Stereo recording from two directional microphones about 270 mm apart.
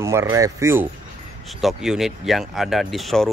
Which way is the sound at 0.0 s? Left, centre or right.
Centre.